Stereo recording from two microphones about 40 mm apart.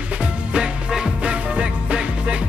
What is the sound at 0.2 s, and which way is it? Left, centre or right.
Music, right.